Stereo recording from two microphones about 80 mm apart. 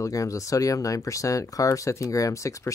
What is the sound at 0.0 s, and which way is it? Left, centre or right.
Speech, left.